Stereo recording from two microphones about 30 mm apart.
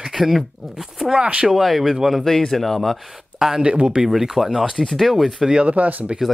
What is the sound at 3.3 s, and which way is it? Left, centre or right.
Speech, centre.